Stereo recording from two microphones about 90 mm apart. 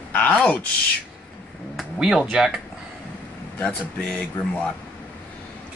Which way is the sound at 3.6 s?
15° left (ahead or behind).